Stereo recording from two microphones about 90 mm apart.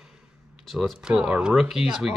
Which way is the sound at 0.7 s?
5° right (ahead or behind).